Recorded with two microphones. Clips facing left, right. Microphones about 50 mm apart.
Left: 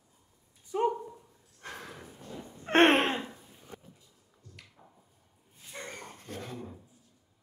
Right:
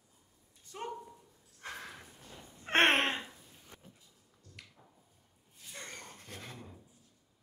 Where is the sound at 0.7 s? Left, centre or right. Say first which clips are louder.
Left 13 dB; centre.